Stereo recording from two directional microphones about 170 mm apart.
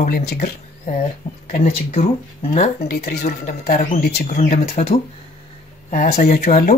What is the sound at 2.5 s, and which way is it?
Speech, 60° left (ahead or behind).